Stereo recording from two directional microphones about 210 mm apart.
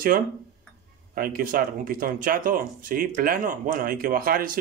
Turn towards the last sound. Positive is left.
turn(degrees=-45)  # may be behind; listen again after turning